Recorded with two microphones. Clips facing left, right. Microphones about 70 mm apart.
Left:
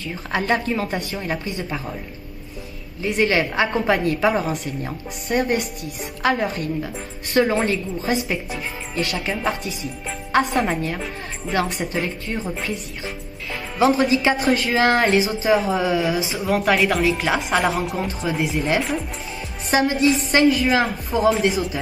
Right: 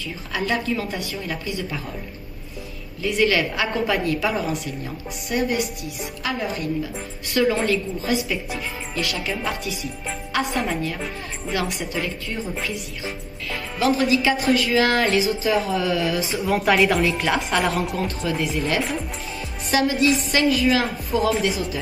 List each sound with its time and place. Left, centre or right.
0.0 s a woman's voice: left
3.0 s a woman's voice: left
7.5 s a woman's voice: left
13.5 s speech: left
16.3 s speech: centre
19.7 s a woman's voice: left